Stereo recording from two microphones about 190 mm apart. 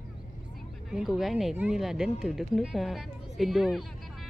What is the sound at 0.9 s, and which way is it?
Speech, centre (ahead or behind).